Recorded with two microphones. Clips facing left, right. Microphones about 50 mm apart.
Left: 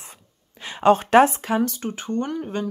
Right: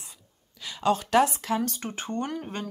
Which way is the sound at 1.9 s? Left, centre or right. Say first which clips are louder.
Left 4 dB; centre.